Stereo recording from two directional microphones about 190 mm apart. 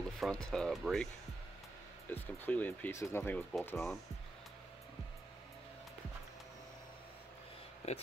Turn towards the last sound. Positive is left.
turn(degrees=35)  # may be behind; listen again after turning